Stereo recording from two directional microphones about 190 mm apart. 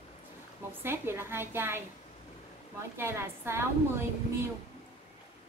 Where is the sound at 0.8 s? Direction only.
10° right (ahead or behind).